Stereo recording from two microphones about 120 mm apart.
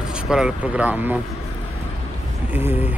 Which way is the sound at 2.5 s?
15° right (ahead or behind).